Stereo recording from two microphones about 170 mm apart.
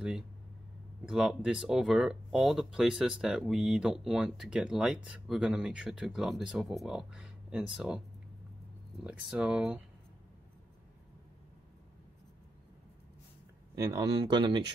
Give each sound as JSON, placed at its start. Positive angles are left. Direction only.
{"t": 1.0, "sound": "speech", "side_deg": -5}
{"t": 9.0, "sound": "speech", "side_deg": -5}
{"t": 13.7, "sound": "speech", "side_deg": -15}